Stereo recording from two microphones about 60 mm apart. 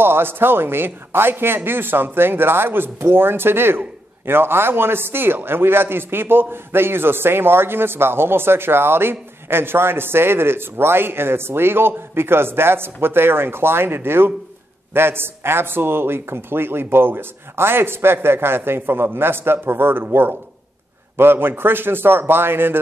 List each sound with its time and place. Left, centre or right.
0.0 s a man's voice: right